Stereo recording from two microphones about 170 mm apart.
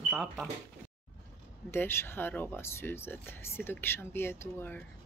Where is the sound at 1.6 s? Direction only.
15° left (ahead or behind).